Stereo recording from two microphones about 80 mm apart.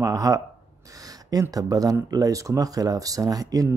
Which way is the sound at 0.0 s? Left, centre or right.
Right.